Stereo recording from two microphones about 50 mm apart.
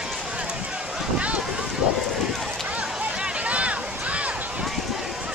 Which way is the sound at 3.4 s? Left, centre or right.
Right.